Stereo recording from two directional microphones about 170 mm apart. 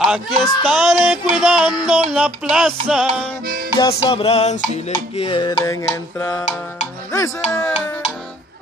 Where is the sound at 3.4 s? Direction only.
55° right (ahead or behind).